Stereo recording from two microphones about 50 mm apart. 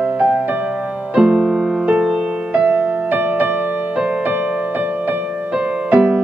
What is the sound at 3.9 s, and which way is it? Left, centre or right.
Music, right.